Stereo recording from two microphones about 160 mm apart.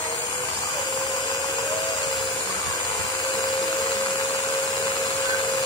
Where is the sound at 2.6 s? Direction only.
25° left (ahead or behind).